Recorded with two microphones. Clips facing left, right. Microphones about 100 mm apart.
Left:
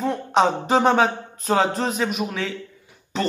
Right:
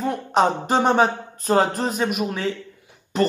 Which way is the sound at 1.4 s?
40° right (ahead or behind).